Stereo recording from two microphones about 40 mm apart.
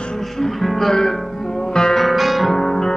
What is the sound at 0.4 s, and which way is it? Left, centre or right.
Music, centre.